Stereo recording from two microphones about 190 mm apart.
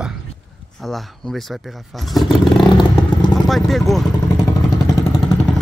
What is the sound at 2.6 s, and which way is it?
Vehicle, 25° left (ahead or behind).